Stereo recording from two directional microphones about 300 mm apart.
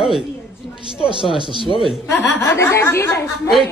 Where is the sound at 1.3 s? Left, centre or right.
Centre.